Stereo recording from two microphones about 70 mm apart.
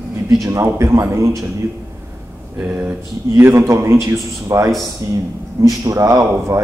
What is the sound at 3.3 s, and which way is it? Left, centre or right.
A man's voice, right.